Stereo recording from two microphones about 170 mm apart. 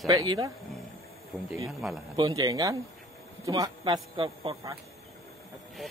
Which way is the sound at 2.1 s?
25° right (ahead or behind).